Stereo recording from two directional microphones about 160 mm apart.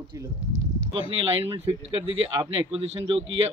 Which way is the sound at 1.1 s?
40° right (ahead or behind).